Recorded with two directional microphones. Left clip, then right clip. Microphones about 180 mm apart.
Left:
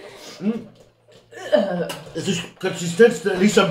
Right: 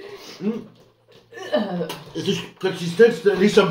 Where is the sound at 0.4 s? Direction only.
Centre (ahead or behind).